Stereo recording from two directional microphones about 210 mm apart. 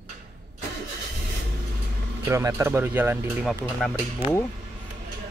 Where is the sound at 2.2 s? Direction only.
15° right (ahead or behind).